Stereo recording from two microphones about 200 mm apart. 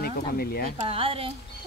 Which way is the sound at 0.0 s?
50° left (ahead or behind).